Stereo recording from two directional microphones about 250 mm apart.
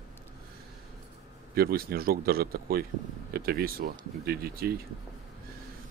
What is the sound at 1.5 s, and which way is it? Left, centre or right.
Speech, right.